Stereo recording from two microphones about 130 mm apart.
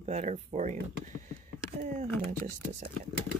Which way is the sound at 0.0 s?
60° right (ahead or behind).